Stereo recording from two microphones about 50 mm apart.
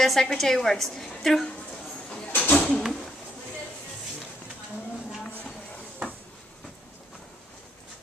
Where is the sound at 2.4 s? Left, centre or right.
Left.